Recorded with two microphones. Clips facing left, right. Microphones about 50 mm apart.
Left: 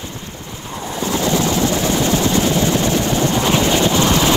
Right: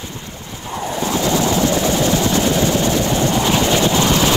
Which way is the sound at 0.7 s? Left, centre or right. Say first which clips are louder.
Right 1 dB; right.